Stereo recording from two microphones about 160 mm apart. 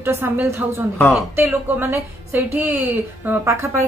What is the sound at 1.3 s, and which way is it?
A woman's voice, 10° right (ahead or behind).